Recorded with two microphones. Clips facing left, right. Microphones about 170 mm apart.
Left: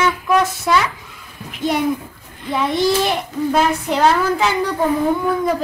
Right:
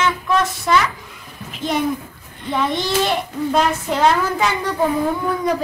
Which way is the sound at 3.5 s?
5° left (ahead or behind).